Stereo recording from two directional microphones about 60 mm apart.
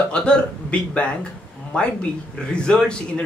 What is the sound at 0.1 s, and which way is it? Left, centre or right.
Speech, centre.